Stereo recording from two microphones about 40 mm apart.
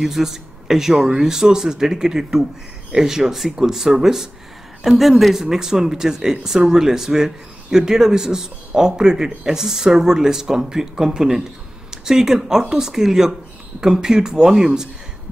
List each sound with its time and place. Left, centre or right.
0.0 s speech: centre